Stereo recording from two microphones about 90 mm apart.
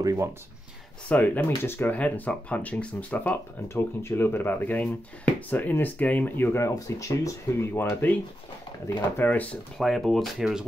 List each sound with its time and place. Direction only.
0.0 s speech: 35° right (ahead or behind)
1.0 s speech: 15° left (ahead or behind)
3.6 s speech: 30° left (ahead or behind)
6.7 s speech: 40° left (ahead or behind)
7.7 s speech: 25° left (ahead or behind)
9.8 s speech: centre (ahead or behind)